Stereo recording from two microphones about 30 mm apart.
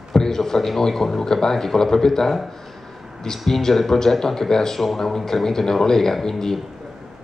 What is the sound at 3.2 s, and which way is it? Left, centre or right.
Speech, centre.